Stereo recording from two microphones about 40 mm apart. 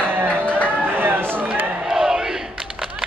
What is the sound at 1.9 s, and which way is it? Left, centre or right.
Battle cry, centre.